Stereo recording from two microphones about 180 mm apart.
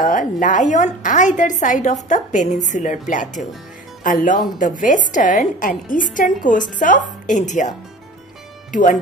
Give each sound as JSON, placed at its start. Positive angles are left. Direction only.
{"t": 0.0, "sound": "a woman's voice", "side_deg": 45}